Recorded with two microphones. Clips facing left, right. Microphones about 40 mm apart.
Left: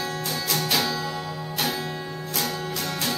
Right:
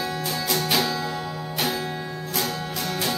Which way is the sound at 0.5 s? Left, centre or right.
Centre.